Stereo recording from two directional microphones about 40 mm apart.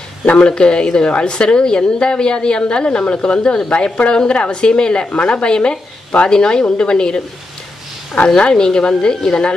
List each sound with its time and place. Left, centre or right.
0.2 s a woman's voice: left
8.3 s a woman's voice: left